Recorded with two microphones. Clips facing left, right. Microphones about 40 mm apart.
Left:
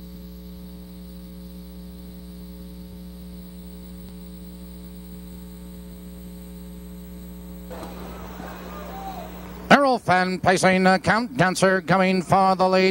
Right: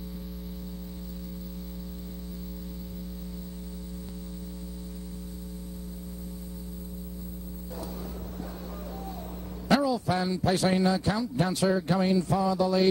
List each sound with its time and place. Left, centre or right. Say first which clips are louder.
8.9 s vehicle: left 8 dB; left
9.7 s a man's voice: left 9 dB; left